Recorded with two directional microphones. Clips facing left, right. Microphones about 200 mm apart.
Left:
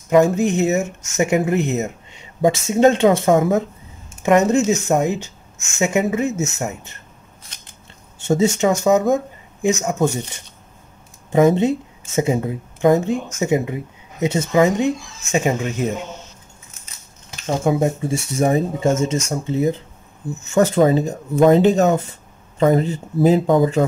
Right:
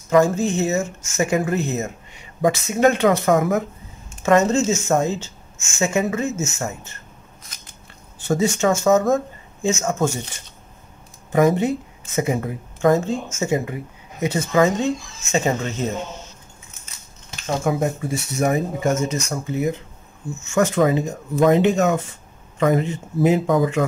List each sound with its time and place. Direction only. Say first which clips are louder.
0.1 s speech: left 2 dB; 20° left (ahead or behind)
8.2 s speech: left 3 dB; 25° left (ahead or behind)
11.3 s speech: left 3 dB; 25° left (ahead or behind)
17.6 s speech: left 4 dB; 25° left (ahead or behind)